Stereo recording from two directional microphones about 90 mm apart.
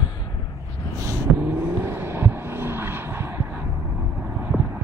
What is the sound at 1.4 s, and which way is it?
Vehicle, 25° right (ahead or behind).